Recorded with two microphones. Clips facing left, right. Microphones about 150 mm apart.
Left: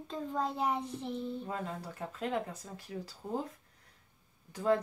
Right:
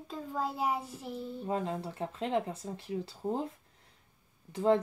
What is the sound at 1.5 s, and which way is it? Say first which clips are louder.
Speech: right 5 dB; 25° right (ahead or behind).